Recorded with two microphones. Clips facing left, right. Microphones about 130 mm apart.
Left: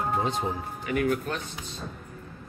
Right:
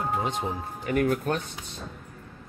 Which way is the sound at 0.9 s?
45° right (ahead or behind).